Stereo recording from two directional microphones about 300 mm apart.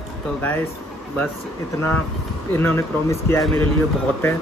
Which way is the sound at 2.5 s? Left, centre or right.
Centre.